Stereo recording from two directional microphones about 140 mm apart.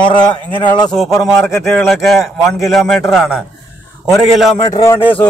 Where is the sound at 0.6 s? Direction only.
30° left (ahead or behind).